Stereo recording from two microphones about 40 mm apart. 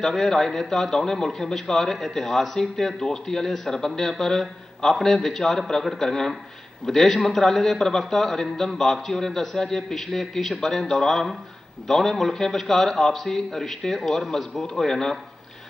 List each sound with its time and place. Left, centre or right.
0.0 s a man's voice: centre